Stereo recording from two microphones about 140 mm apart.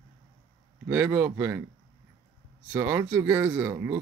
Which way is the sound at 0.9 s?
15° right (ahead or behind).